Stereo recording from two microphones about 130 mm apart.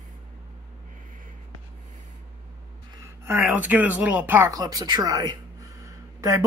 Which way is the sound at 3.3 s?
15° right (ahead or behind).